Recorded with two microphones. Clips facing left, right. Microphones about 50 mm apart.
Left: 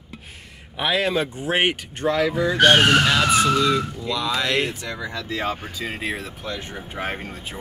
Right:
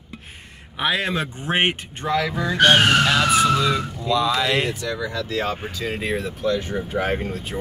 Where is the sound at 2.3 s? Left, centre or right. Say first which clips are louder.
Even; centre.